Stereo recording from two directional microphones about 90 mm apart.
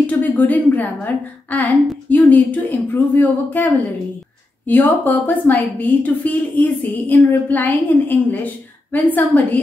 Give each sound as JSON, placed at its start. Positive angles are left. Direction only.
{"t": 0.0, "sound": "a woman's voice", "side_deg": 20}